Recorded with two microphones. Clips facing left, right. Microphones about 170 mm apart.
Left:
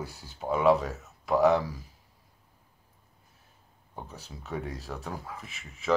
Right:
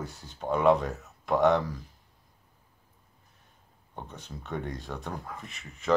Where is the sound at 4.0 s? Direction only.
5° left (ahead or behind).